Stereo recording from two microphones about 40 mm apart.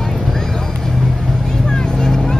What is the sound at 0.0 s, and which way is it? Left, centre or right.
Vehicle, centre.